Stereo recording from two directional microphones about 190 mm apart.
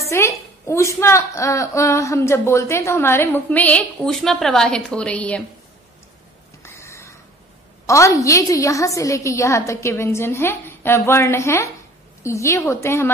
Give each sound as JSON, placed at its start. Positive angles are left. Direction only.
{"t": 0.1, "sound": "a woman's voice", "side_deg": 15}
{"t": 6.6, "sound": "a sound", "side_deg": 15}
{"t": 7.8, "sound": "a woman's voice", "side_deg": 15}